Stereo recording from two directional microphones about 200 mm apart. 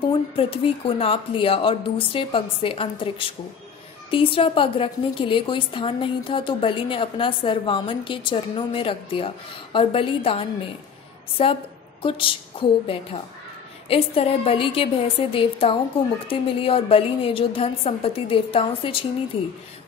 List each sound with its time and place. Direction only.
0.0 s a woman's voice: 25° left (ahead or behind)